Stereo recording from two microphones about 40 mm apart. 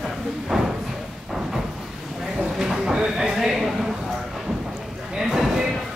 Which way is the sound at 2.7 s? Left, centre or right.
Centre.